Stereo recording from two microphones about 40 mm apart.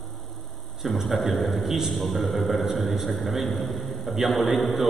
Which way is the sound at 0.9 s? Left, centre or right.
Centre.